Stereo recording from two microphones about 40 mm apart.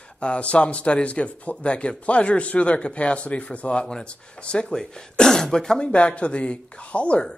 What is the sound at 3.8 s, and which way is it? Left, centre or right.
Speech, centre.